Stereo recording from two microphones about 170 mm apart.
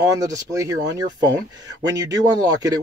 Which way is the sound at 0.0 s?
20° right (ahead or behind).